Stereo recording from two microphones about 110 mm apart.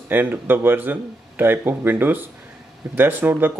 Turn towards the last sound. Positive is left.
turn(degrees=-20)  # may be behind; listen again after turning